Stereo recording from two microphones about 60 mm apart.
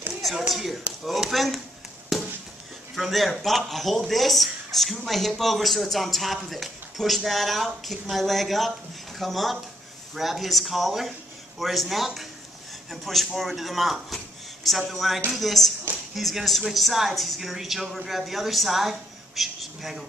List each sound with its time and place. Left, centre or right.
0.2 s speech: centre
2.1 s a sound: centre
3.0 s speech: centre